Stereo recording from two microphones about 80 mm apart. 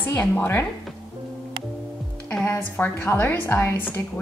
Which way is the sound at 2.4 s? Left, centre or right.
Left.